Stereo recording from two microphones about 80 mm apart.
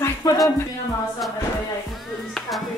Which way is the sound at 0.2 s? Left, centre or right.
Left.